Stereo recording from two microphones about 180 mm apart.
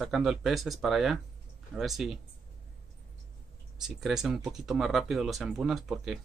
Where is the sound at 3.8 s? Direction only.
5° right (ahead or behind).